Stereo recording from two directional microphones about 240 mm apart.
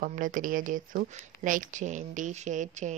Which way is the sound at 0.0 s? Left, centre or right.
Right.